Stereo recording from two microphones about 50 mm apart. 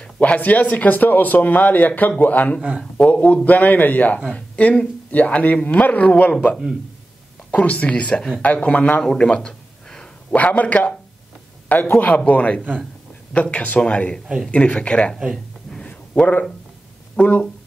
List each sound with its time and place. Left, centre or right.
0.0 s a man's voice: left
7.6 s a man's voice: left
9.0 s a sound: centre
10.3 s a man's voice: left
14.2 s a man's voice: centre
14.5 s a man's voice: left
15.1 s a man's voice: centre
15.7 s a sound: centre
17.2 s a man's voice: left